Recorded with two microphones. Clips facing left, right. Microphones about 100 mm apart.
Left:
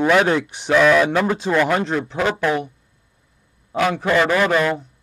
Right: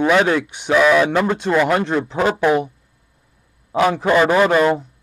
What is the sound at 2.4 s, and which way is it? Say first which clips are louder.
Speech: right 4 dB; 15° right (ahead or behind).